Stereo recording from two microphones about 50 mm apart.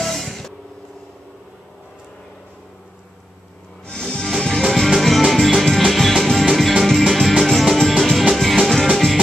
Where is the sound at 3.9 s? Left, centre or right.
Centre.